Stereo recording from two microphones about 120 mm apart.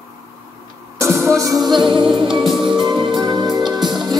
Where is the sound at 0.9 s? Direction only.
25° right (ahead or behind); by 2.4 s 45° right (ahead or behind).